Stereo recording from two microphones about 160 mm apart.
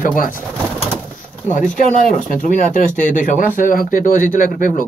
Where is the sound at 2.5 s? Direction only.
55° left (ahead or behind).